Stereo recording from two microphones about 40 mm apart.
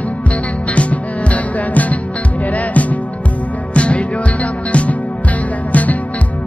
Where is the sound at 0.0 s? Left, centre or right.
Left.